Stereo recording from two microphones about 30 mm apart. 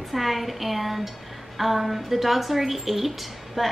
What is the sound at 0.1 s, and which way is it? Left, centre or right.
A woman's voice, centre.